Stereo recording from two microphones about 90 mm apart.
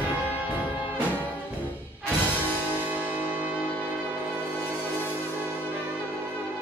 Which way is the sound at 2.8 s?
20° right (ahead or behind).